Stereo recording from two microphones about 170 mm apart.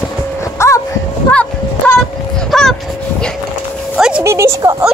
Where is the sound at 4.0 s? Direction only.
5° right (ahead or behind).